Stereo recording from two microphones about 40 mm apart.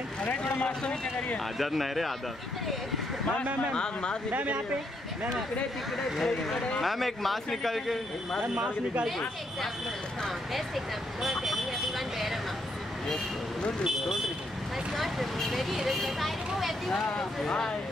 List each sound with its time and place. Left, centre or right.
0.2 s speech: left
1.6 s speech: centre
3.7 s speech: left
4.3 s speech: right
6.2 s speech: centre
11.2 s vehicle: centre
15.0 s speech: centre
16.9 s speech: centre